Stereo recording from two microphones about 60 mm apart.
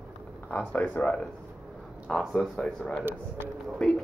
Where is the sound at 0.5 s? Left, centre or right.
Left.